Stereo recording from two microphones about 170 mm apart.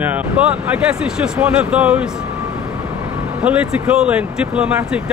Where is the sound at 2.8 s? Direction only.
5° right (ahead or behind).